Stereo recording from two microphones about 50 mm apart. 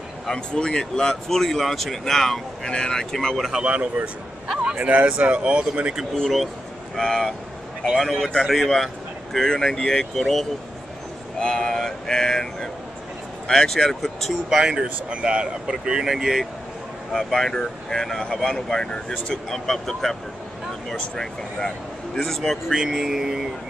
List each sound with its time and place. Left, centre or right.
0.3 s speech: centre
3.3 s speech: centre
3.6 s speech: right
7.0 s a man's voice: centre
11.3 s speech: centre
14.5 s speech: centre
17.1 s speech: centre
21.2 s speech: centre
22.7 s speech: centre